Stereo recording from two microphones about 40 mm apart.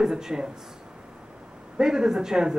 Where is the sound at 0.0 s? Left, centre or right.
Centre.